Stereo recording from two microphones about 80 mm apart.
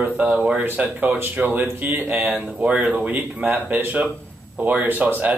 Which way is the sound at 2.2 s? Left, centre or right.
Centre.